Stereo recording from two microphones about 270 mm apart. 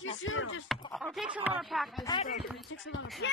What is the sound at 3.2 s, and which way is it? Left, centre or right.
Speech, left.